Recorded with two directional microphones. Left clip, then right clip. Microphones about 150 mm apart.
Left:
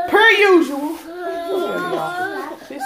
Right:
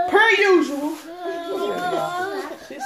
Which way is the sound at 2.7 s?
35° left (ahead or behind).